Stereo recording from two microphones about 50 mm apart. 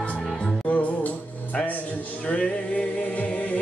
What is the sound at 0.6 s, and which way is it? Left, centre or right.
Music, left.